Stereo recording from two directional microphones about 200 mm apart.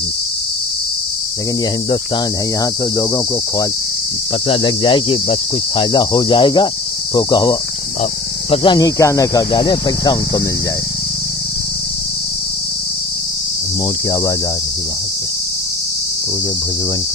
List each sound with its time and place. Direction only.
4.5 s speech: 25° left (ahead or behind)